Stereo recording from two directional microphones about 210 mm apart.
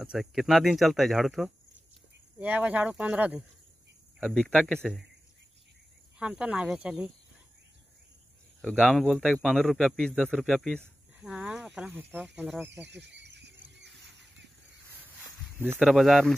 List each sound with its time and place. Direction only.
0.0 s speech: centre (ahead or behind)
6.1 s speech: 5° right (ahead or behind)
8.5 s speech: 5° right (ahead or behind)
12.8 s squeal: 55° right (ahead or behind)
15.8 s speech: centre (ahead or behind)